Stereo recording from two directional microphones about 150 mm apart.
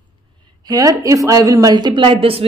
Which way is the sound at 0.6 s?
25° right (ahead or behind).